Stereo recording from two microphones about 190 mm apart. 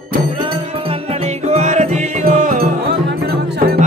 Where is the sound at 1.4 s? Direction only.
35° right (ahead or behind).